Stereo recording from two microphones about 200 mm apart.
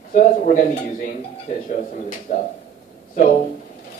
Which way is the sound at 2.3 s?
40° left (ahead or behind).